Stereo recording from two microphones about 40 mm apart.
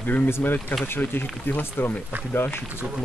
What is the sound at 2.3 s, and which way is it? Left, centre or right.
Speech, left.